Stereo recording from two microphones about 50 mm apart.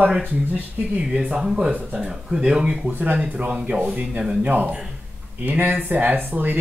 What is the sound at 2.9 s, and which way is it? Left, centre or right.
Speech, right.